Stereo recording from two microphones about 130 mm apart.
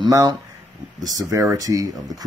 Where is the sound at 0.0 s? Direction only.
30° right (ahead or behind).